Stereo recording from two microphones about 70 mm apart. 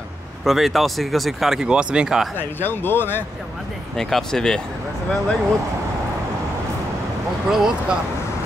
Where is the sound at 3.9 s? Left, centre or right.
Centre.